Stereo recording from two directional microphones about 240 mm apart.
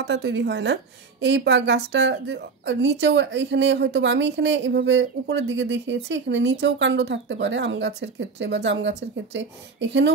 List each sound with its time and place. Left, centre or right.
0.0 s a woman's voice: right